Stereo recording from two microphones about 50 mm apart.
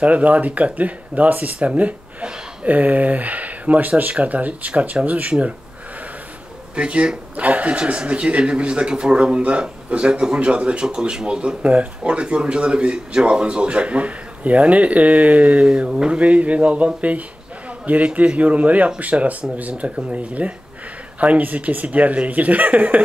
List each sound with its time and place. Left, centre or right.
0.0 s speech: right
6.7 s speech: right
15.7 s speech: centre